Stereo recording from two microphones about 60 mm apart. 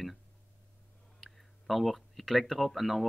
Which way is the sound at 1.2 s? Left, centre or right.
Centre.